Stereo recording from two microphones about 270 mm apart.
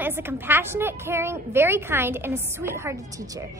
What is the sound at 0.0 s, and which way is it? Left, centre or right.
A woman's voice, centre.